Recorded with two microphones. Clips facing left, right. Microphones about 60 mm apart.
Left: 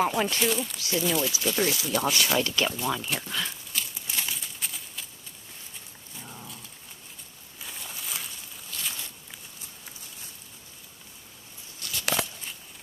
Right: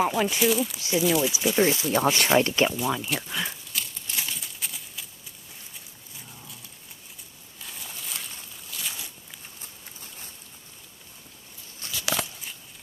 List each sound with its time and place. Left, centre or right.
0.0 s speech: centre
0.7 s speech: right
2.7 s speech: centre
3.7 s horse: centre
7.6 s a sound: centre
11.8 s a sound: right